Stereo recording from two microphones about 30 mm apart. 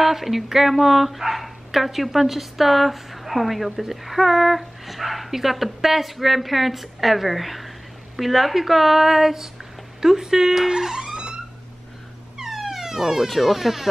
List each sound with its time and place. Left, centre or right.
0.0 s speech: centre
10.7 s guitar: right
12.4 s a sound: centre
13.4 s speech: centre